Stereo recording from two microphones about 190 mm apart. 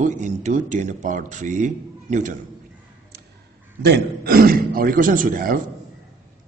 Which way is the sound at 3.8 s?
55° right (ahead or behind).